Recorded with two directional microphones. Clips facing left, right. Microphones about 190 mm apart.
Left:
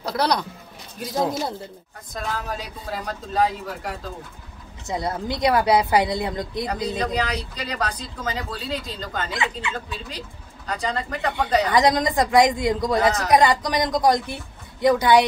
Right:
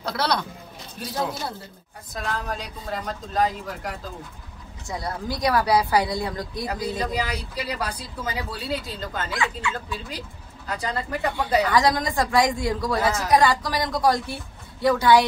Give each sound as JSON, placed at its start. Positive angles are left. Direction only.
{"t": 0.0, "sound": "speech", "side_deg": 15}
{"t": 2.1, "sound": "speech", "side_deg": 5}
{"t": 4.8, "sound": "a woman's voice", "side_deg": 20}
{"t": 7.0, "sound": "speech", "side_deg": -5}
{"t": 9.3, "sound": "a woman's voice", "side_deg": 20}
{"t": 10.7, "sound": "speech", "side_deg": -5}
{"t": 11.7, "sound": "a woman's voice", "side_deg": 20}